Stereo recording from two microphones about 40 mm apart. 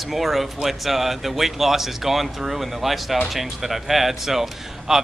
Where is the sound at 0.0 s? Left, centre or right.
Centre.